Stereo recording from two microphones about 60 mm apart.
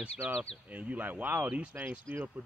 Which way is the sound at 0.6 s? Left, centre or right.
Right.